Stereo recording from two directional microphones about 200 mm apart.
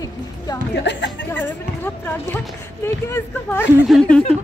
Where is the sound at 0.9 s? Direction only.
60° left (ahead or behind).